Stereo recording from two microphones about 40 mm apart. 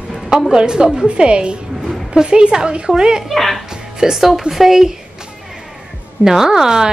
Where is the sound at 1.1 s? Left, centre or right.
Right.